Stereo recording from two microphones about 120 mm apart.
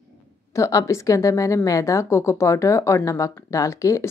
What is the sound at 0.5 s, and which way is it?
A woman's voice, 30° left (ahead or behind).